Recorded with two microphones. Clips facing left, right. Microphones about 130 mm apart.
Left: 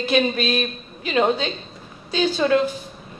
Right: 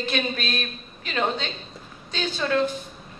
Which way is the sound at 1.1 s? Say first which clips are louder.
Left 6 dB; 15° left (ahead or behind).